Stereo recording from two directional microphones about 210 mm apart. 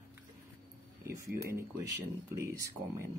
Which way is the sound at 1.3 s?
45° right (ahead or behind).